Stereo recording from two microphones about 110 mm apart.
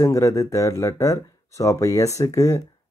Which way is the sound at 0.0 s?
30° left (ahead or behind).